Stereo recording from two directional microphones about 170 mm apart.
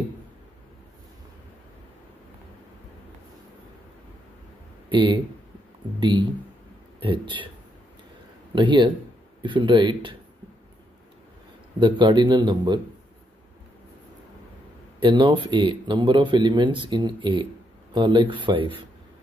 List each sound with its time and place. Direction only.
4.8 s speech: 30° right (ahead or behind)
8.5 s speech: 30° right (ahead or behind)
11.8 s speech: 25° right (ahead or behind)
15.0 s speech: 30° right (ahead or behind)